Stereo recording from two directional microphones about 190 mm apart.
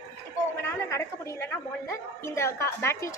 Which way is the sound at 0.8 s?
15° left (ahead or behind).